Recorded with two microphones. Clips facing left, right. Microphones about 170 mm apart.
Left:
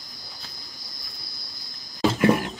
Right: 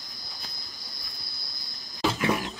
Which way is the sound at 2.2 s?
55° left (ahead or behind).